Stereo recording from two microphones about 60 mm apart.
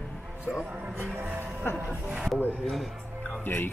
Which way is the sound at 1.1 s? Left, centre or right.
Right.